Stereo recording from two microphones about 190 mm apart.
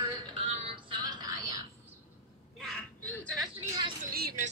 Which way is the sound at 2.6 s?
5° left (ahead or behind).